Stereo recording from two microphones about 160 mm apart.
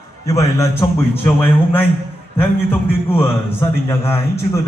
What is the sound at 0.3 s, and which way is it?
Speech, 20° left (ahead or behind).